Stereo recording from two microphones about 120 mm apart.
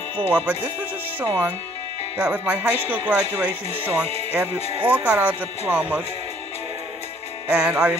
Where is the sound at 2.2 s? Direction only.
10° right (ahead or behind).